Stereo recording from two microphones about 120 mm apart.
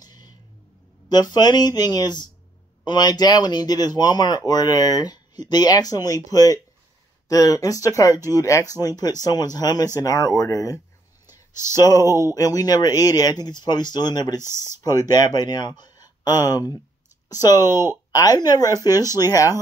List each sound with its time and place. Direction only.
0.0 s a sound: 35° left (ahead or behind)
1.0 s speech: 35° left (ahead or behind)
12.1 s speech: 25° right (ahead or behind)
12.4 s speech: 30° left (ahead or behind)
18.1 s speech: 30° left (ahead or behind)